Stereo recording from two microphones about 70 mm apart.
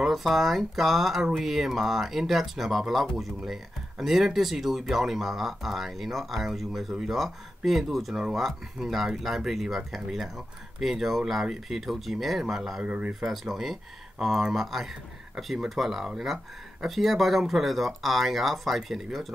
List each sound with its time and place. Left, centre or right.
0.0 s speech: centre
12.8 s speech: centre
13.2 s speech: centre